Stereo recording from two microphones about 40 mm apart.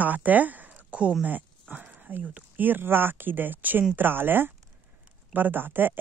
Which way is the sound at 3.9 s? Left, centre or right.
Right.